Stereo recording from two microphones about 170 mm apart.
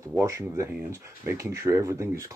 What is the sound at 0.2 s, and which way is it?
Speech, 15° right (ahead or behind).